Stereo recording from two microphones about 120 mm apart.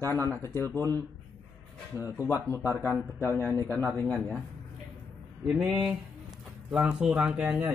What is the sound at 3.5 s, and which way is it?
Speech, 20° left (ahead or behind).